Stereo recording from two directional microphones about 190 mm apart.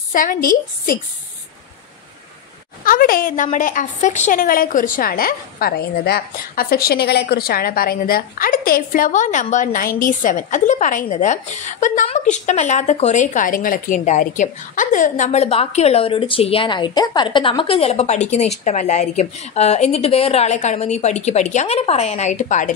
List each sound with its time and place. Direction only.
0.1 s a woman's voice: 45° left (ahead or behind)
2.8 s a woman's voice: 50° left (ahead or behind)